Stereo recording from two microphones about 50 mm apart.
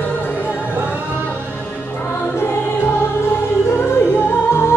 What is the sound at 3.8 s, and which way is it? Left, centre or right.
Music, left.